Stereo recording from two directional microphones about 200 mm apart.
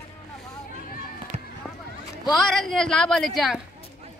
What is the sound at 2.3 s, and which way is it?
A woman's voice, centre (ahead or behind).